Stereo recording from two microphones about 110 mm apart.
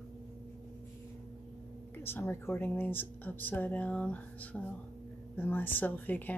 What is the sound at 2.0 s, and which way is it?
Speech, 20° left (ahead or behind).